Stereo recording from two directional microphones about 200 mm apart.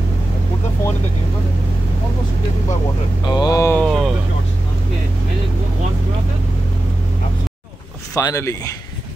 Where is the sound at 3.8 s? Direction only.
Centre (ahead or behind).